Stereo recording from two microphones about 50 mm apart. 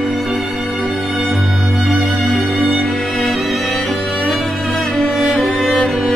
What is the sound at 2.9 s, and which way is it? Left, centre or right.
Music, centre.